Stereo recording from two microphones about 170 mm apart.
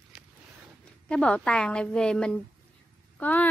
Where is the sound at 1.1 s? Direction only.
5° left (ahead or behind).